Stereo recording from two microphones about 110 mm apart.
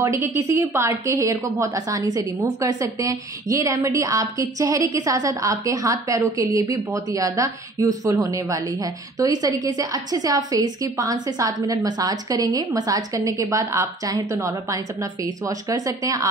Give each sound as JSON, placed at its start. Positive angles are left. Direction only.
{"t": 0.0, "sound": "a woman's voice", "side_deg": -25}